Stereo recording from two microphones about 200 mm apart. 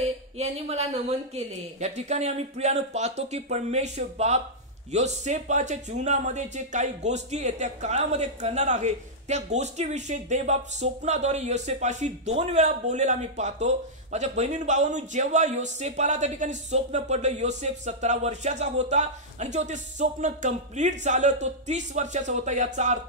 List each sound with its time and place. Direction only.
0.4 s a man's voice: 30° right (ahead or behind)